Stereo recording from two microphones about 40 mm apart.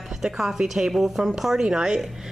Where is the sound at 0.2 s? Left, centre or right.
Centre.